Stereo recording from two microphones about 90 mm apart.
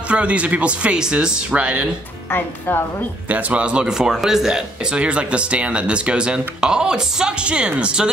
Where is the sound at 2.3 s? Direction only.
25° left (ahead or behind).